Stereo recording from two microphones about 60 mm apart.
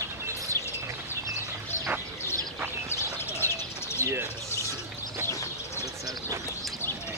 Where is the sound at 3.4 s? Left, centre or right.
Left.